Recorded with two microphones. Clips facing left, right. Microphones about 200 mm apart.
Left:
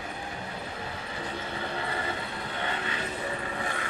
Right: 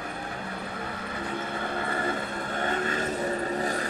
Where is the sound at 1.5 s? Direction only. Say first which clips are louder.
Right 2 dB; 50° right (ahead or behind).